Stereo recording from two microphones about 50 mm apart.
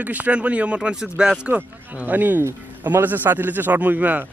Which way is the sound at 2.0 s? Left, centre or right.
Right.